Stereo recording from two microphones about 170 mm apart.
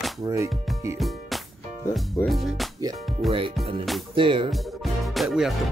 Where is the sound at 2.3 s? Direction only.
Centre (ahead or behind).